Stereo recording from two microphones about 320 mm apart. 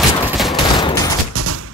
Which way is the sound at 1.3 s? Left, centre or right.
Right.